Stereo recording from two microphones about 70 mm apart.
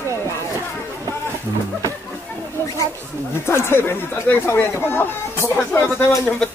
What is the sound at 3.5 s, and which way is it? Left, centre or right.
Speech, left.